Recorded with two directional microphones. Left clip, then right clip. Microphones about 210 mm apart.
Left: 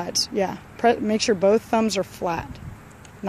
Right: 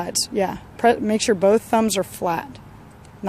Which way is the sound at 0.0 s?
Centre (ahead or behind).